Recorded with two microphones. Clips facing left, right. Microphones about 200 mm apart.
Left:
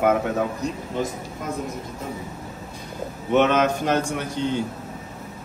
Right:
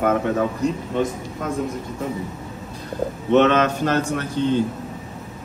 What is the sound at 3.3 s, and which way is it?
A man's voice, 10° left (ahead or behind).